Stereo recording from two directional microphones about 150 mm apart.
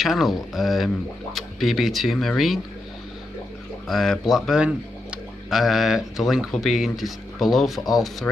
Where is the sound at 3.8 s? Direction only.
Centre (ahead or behind).